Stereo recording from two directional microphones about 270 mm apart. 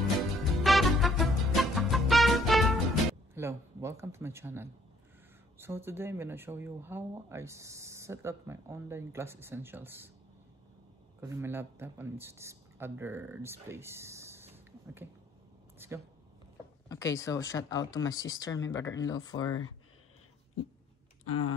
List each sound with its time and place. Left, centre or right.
0.7 s music: centre
5.6 s speech: centre
11.1 s a man's voice: centre
16.9 s speech: centre
21.2 s typing: left